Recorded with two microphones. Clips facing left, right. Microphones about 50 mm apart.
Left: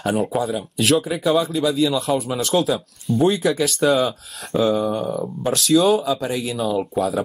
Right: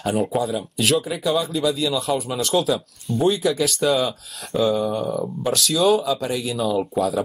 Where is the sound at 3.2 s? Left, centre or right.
Left.